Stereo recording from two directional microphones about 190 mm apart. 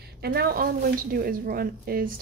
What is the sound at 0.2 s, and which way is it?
A woman's voice, 55° right (ahead or behind).